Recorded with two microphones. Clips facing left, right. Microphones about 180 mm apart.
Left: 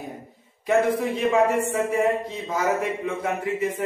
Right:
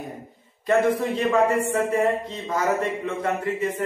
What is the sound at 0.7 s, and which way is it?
Speech, 10° left (ahead or behind).